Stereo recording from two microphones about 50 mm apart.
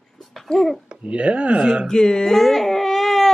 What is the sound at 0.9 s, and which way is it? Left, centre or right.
Speech, right.